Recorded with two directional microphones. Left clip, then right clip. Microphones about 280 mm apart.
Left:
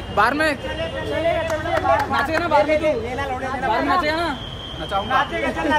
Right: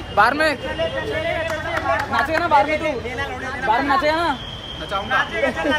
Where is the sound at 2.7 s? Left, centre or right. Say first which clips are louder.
Left 3 dB; left.